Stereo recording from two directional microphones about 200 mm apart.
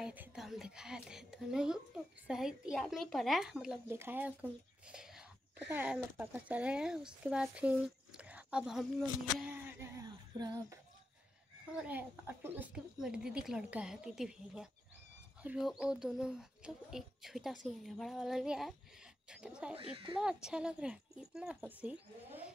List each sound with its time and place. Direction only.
0.0 s speech: 5° right (ahead or behind)
8.2 s a sound: 5° right (ahead or behind)
11.7 s speech: 10° right (ahead or behind)
19.7 s speech: 30° right (ahead or behind)
20.2 s speech: 5° right (ahead or behind)